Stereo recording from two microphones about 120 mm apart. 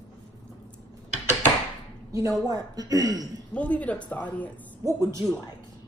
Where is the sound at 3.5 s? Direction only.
10° left (ahead or behind).